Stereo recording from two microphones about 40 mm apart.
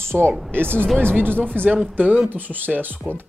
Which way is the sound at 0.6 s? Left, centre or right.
Right.